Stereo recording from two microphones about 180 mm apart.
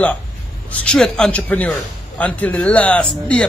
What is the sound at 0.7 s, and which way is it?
A man's voice, 5° left (ahead or behind).